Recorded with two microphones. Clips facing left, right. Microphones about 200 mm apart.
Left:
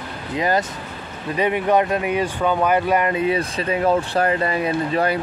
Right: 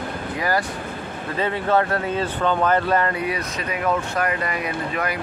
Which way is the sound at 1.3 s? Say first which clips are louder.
Left 3 dB; 15° left (ahead or behind).